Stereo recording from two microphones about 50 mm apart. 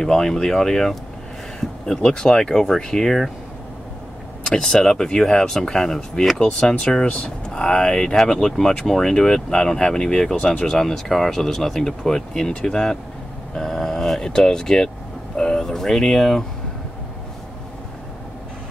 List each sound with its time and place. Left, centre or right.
0.0 s speech: centre
4.6 s speech: centre
10.8 s speech: centre